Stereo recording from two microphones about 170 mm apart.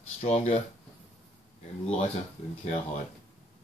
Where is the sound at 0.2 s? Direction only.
40° left (ahead or behind).